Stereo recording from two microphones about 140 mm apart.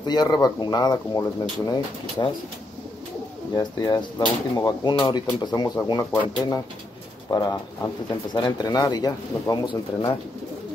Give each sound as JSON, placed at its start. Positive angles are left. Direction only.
{"t": 0.0, "sound": "speech", "side_deg": 30}
{"t": 3.5, "sound": "speech", "side_deg": 30}